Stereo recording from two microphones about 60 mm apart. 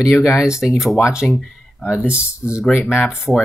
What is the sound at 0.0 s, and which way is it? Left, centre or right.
Speech, centre.